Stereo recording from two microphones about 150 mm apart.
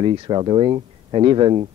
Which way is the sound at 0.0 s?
35° right (ahead or behind).